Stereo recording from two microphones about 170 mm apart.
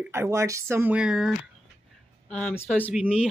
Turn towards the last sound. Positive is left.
turn(degrees=-5)  # may be behind; listen again after turning